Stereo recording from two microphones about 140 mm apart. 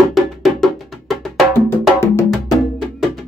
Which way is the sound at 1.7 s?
20° left (ahead or behind).